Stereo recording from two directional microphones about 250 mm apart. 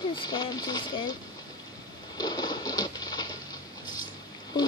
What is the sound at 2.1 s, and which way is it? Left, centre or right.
Patter, centre.